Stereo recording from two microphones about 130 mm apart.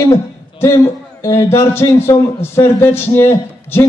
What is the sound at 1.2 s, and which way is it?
A man's voice, 20° left (ahead or behind).